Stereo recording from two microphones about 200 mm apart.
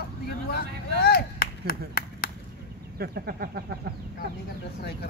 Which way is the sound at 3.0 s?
50° right (ahead or behind).